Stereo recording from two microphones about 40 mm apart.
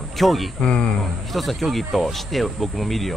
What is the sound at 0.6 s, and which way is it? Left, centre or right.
Speech, left.